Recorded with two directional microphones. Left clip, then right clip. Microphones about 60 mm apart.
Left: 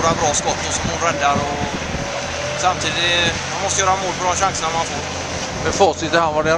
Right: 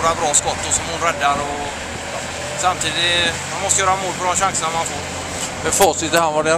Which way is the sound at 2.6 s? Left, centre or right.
Centre.